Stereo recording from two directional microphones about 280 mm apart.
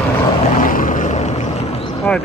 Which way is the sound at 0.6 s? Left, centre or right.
Left.